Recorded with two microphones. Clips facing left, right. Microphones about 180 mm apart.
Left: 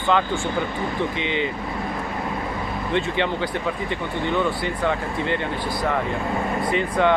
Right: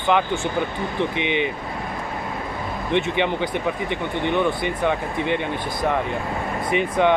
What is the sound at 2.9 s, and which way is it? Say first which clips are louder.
Speech: right 2 dB; 20° right (ahead or behind).